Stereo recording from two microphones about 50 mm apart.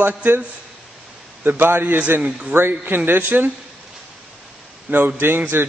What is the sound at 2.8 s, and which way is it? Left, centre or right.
Speech, right.